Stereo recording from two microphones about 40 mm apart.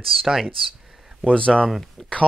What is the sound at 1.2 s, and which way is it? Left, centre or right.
Speech, left.